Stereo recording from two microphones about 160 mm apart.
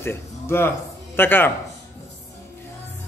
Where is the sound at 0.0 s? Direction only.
15° left (ahead or behind).